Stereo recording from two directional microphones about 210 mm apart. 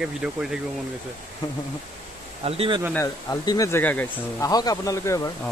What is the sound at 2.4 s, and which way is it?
Speech, 25° right (ahead or behind).